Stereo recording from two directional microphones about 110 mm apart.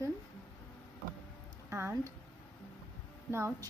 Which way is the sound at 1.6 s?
25° right (ahead or behind).